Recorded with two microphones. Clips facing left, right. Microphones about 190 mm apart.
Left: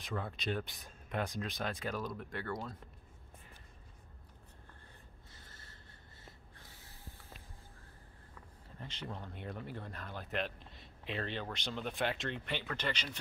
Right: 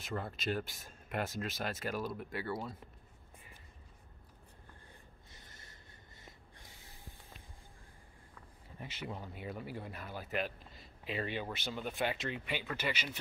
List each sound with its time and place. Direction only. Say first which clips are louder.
0.0 s speech: right 1 dB; 5° right (ahead or behind)
5.3 s gasp: right 1 dB; 15° right (ahead or behind)
6.2 s snort: even; 15° right (ahead or behind)
8.7 s speech: right 2 dB; 10° right (ahead or behind)